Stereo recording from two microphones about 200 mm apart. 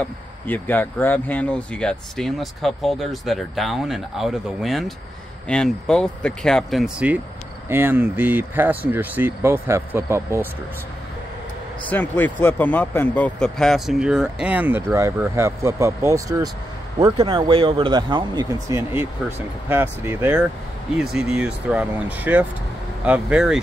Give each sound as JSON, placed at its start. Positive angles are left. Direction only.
{"t": 0.0, "sound": "speech", "side_deg": 10}
{"t": 11.9, "sound": "speech", "side_deg": 10}